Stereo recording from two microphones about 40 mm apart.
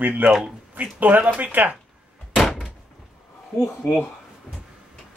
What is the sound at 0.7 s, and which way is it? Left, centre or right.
Speech, right.